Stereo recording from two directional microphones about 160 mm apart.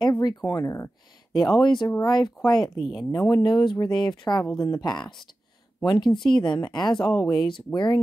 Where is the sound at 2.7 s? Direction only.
Centre (ahead or behind).